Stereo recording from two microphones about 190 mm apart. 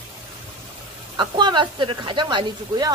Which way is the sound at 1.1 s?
25° right (ahead or behind).